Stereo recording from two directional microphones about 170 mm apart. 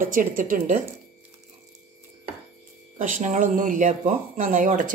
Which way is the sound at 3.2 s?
50° right (ahead or behind).